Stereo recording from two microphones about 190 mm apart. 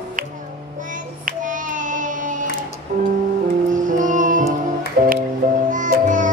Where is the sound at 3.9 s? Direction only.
40° right (ahead or behind).